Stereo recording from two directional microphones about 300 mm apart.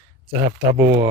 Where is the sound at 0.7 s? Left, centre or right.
Right.